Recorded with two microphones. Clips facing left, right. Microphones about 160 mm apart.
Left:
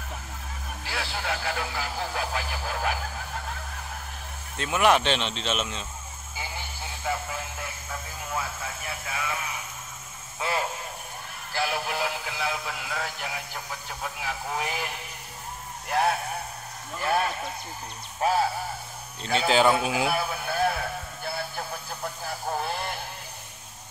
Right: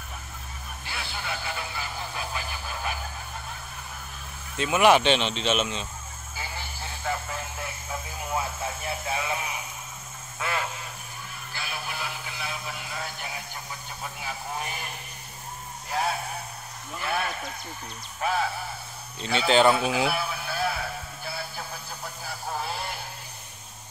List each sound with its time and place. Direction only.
0.8 s radio: 90° left
4.6 s speech: 5° right (ahead or behind)
7.0 s speech: 10° left (ahead or behind)
8.3 s speech: 30° right (ahead or behind)
10.4 s speech: 30° left (ahead or behind)
11.5 s a sound: 80° left
14.2 s radio: 90° left
15.9 s vehicle: 60° left (ahead or behind)
17.0 s speech: 40° left (ahead or behind)
19.2 s speech: 45° left (ahead or behind)
20.1 s radio: 45° left (ahead or behind)
22.6 s radio: 55° left (ahead or behind)